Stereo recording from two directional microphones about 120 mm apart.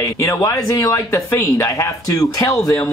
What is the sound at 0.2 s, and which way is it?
Speech, 30° left (ahead or behind).